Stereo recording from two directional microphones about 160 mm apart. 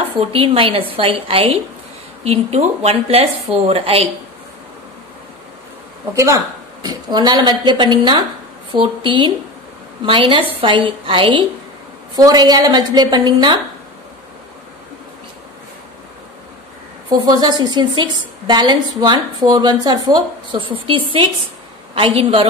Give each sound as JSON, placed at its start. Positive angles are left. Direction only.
{"t": 0.2, "sound": "a woman's voice", "side_deg": -35}
{"t": 6.1, "sound": "a woman's voice", "side_deg": -20}
{"t": 17.1, "sound": "a woman's voice", "side_deg": -25}